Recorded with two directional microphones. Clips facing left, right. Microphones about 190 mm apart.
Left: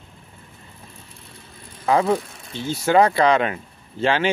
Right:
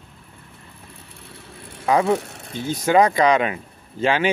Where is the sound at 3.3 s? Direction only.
35° left (ahead or behind).